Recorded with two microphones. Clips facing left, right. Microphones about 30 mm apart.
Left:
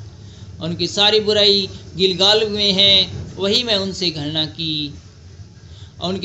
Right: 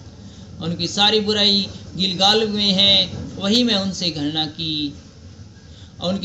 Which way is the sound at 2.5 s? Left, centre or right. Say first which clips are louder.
Left 2 dB; left.